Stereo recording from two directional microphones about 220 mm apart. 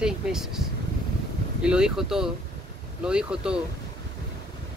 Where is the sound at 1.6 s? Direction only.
5° right (ahead or behind).